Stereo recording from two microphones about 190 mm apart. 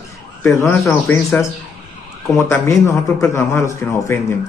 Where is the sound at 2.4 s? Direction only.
15° left (ahead or behind).